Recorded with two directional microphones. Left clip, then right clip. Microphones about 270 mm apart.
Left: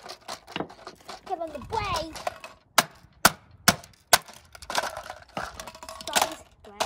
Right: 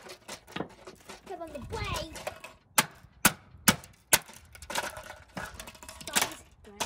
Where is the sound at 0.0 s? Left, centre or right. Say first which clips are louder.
Left 6 dB; centre.